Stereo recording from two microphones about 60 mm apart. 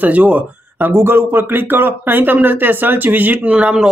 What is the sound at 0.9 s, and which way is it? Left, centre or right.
Speech, right.